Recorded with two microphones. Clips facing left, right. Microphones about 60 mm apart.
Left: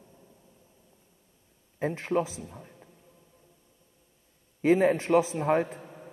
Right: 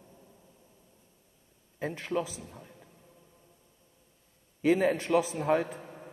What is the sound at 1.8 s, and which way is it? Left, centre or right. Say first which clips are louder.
Speech: left 4 dB; left.